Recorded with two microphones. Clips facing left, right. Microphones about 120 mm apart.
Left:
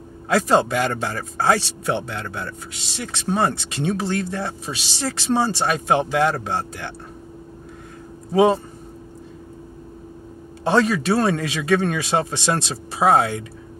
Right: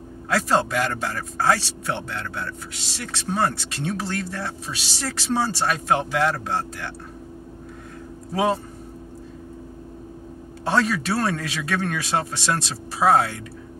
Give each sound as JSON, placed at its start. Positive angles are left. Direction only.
{"t": 0.3, "sound": "speech", "side_deg": 20}
{"t": 10.6, "sound": "speech", "side_deg": 20}